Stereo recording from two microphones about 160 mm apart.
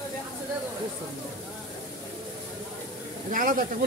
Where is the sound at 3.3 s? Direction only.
60° right (ahead or behind).